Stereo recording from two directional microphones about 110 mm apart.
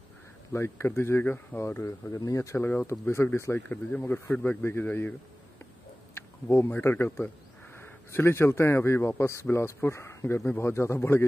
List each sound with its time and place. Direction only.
0.5 s speech: 25° left (ahead or behind)
2.6 s speech: 15° left (ahead or behind)
6.5 s speech: 20° left (ahead or behind)